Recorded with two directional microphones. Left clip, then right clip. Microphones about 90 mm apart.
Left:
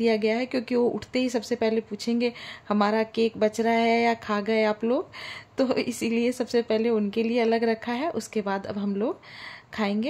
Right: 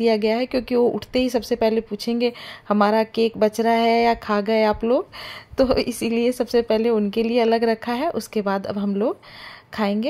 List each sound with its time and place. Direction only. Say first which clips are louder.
0.0 s speech: right 4 dB; 30° right (ahead or behind)